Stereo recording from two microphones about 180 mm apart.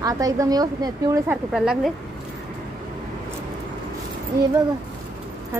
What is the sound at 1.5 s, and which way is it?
Speech, 5° right (ahead or behind).